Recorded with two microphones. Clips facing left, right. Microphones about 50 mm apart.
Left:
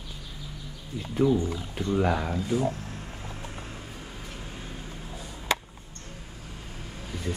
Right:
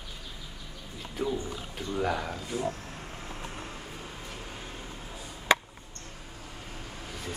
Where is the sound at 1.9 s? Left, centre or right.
Centre.